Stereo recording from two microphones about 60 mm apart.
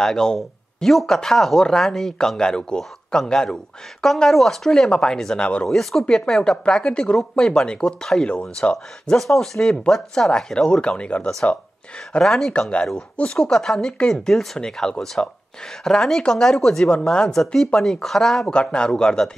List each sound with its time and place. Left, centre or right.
0.0 s speech: centre
5.8 s speech: centre
9.3 s speech: centre
12.1 s speech: centre
12.5 s speech: centre
18.4 s speech: centre